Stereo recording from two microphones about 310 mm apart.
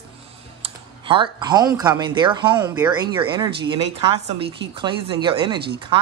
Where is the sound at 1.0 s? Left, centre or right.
Centre.